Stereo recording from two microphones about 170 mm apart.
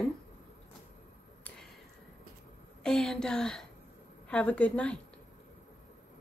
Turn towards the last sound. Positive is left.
turn(degrees=10)  # may be behind; listen again after turning